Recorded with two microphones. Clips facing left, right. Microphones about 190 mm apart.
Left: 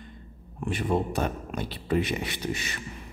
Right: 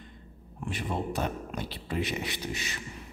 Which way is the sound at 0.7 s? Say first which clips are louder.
Left 6 dB; 50° left (ahead or behind).